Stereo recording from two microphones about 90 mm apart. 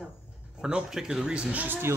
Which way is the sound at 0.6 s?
10° right (ahead or behind).